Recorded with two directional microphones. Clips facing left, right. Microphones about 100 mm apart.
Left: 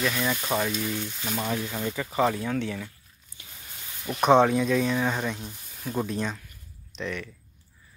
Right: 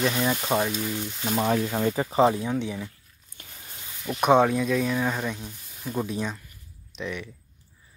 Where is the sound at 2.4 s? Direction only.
15° right (ahead or behind).